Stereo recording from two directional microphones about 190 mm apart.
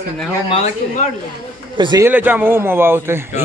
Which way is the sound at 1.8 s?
20° right (ahead or behind).